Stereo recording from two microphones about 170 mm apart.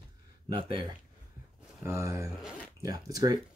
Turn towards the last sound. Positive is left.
turn(degrees=-20)  # may be behind; listen again after turning